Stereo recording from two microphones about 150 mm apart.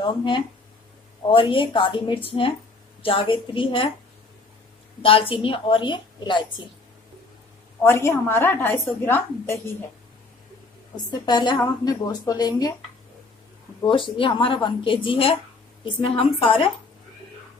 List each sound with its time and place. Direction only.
0.0 s a woman's voice: 35° left (ahead or behind)
5.0 s a woman's voice: 40° left (ahead or behind)
7.8 s a woman's voice: 20° left (ahead or behind)
11.1 s a woman's voice: 30° left (ahead or behind)
13.8 s a woman's voice: 35° left (ahead or behind)